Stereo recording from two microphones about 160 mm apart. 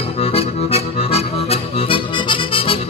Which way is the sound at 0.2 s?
40° left (ahead or behind).